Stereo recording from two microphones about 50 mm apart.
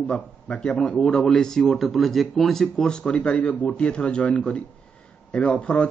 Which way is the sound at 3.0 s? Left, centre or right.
Left.